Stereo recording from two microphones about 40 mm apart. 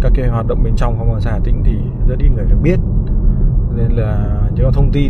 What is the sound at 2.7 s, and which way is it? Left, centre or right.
Speech, centre.